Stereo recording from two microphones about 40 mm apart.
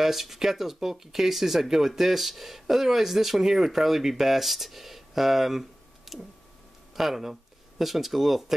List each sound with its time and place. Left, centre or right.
0.0 s speech: centre